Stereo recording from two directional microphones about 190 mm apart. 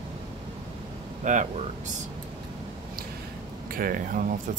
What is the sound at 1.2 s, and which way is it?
Speech, 40° right (ahead or behind).